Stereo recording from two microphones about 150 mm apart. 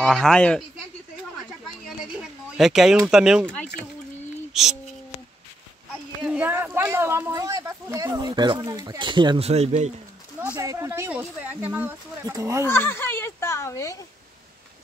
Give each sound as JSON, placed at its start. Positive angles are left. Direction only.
{"t": 0.0, "sound": "speech", "side_deg": 5}
{"t": 2.5, "sound": "speech", "side_deg": -5}
{"t": 4.6, "sound": "speech", "side_deg": 0}
{"t": 6.2, "sound": "speech", "side_deg": -10}
{"t": 9.5, "sound": "a man's voice", "side_deg": -45}
{"t": 10.6, "sound": "speech", "side_deg": -20}
{"t": 12.6, "sound": "a sound", "side_deg": 15}